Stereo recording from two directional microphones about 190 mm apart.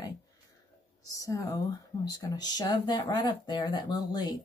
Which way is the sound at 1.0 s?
20° left (ahead or behind).